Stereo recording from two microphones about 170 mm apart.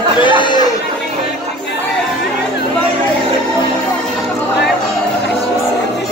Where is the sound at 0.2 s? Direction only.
30° left (ahead or behind).